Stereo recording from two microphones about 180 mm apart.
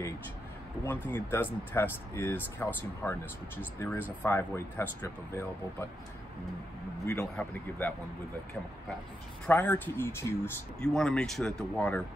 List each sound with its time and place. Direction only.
1.0 s speech: 10° left (ahead or behind)
7.1 s speech: 15° left (ahead or behind)
9.5 s speech: 10° left (ahead or behind)